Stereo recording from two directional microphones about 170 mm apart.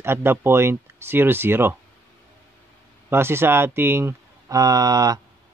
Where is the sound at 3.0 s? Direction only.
15° right (ahead or behind).